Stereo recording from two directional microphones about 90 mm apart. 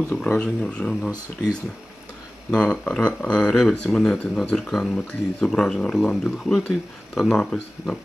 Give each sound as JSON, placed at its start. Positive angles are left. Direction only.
{"t": 0.1, "sound": "speech", "side_deg": 10}
{"t": 2.5, "sound": "speech", "side_deg": 10}